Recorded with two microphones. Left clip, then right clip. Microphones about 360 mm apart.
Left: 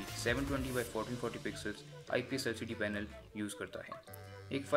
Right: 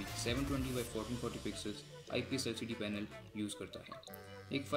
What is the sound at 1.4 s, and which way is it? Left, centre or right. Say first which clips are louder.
Speech: left 2 dB; centre.